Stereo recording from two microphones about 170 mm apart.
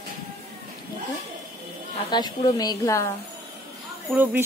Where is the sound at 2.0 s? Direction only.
25° left (ahead or behind).